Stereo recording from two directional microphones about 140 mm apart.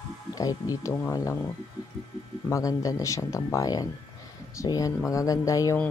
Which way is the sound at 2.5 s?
25° left (ahead or behind).